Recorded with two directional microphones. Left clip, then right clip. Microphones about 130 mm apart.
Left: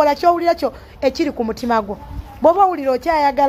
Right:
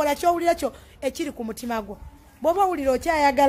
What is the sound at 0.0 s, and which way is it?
A woman's voice, 25° right (ahead or behind).